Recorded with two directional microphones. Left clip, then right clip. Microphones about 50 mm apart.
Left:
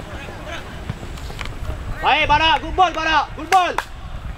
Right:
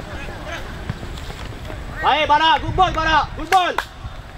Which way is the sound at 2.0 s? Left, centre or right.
Left.